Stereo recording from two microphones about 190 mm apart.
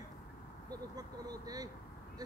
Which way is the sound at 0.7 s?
20° right (ahead or behind).